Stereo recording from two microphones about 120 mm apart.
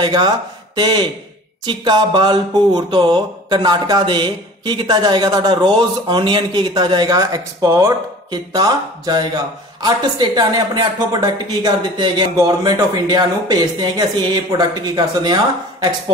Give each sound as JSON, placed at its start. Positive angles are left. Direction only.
{"t": 0.0, "sound": "mantra", "side_deg": -40}